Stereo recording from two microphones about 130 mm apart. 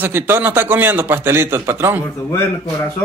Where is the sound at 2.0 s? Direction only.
20° left (ahead or behind).